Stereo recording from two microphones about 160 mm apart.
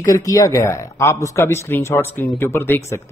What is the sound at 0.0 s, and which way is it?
Speech, 20° left (ahead or behind).